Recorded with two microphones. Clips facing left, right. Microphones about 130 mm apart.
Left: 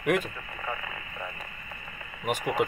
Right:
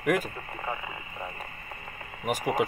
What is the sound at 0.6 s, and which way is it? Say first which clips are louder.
Radio: right 1 dB; 25° right (ahead or behind).